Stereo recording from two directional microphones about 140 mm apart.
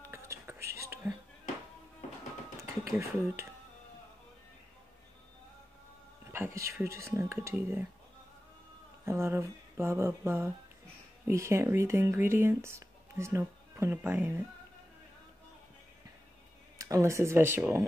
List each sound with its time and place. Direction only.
0.0 s whispering: 20° right (ahead or behind)
2.5 s a sound: 20° right (ahead or behind)
6.3 s speech: 20° right (ahead or behind)
9.0 s speech: 20° right (ahead or behind)
16.7 s speech: 25° right (ahead or behind)